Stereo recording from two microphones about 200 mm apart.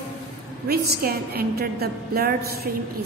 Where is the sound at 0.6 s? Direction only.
50° right (ahead or behind).